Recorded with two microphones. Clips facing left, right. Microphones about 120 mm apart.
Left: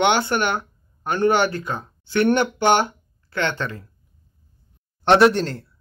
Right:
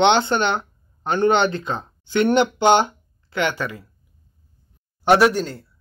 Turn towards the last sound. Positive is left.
turn(degrees=-5)  # may be behind; listen again after turning